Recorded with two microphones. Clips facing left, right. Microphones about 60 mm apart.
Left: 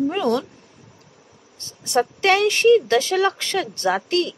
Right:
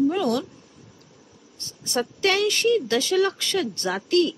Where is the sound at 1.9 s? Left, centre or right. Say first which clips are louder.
Left 5 dB; left.